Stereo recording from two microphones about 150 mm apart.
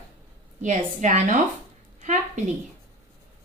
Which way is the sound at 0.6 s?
55° right (ahead or behind).